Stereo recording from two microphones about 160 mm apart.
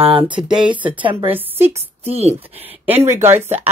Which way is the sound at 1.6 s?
40° right (ahead or behind).